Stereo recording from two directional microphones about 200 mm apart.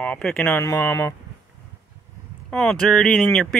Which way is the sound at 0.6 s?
15° left (ahead or behind).